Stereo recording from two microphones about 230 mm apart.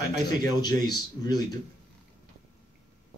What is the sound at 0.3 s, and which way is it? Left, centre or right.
Speech, centre.